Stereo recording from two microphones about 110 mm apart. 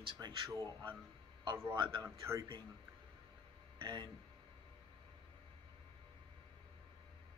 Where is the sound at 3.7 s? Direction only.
45° right (ahead or behind).